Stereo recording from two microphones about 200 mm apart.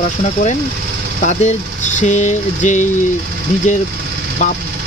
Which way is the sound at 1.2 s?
40° left (ahead or behind).